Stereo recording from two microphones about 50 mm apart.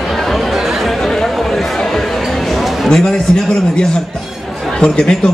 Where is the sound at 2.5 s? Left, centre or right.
Centre.